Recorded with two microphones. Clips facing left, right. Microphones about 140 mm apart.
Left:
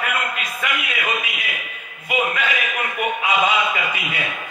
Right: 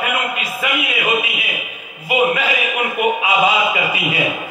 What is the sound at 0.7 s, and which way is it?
Music, 25° right (ahead or behind).